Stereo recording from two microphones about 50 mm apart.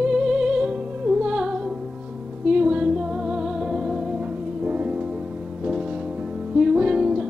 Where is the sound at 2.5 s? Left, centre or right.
Right.